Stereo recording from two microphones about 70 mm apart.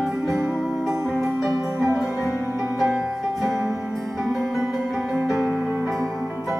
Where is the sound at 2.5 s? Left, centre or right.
Centre.